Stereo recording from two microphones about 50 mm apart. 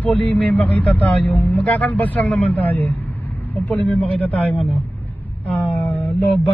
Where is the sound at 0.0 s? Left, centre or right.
Left.